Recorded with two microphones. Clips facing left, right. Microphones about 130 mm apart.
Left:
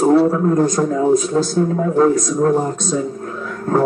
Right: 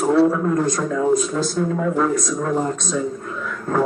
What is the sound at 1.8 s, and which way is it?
Speech, 35° left (ahead or behind).